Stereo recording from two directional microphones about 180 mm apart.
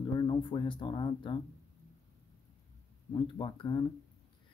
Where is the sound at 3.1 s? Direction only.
25° left (ahead or behind).